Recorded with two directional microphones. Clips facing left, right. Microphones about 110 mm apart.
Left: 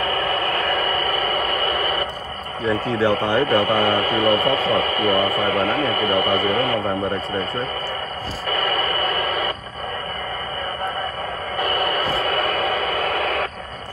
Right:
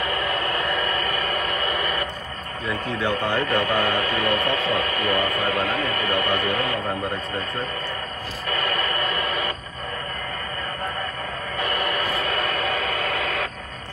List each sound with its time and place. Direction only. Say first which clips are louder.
0.1 s a sound: left 3 dB; 45° left (ahead or behind)
1.6 s radio: left 3 dB; 40° left (ahead or behind)
2.6 s speech: left 6 dB; 30° left (ahead or behind)
8.5 s radio: left 3 dB; 40° left (ahead or behind)
11.6 s music: left 4 dB; 40° left (ahead or behind)
12.4 s radio: left 4 dB; 45° left (ahead or behind)